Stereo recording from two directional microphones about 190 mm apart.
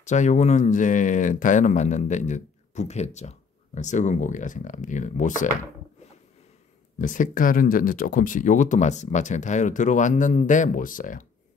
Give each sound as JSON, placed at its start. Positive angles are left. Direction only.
{"t": 0.0, "sound": "speech", "side_deg": 40}
{"t": 7.0, "sound": "speech", "side_deg": 45}